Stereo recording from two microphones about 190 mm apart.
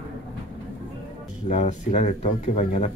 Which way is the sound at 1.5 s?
40° left (ahead or behind).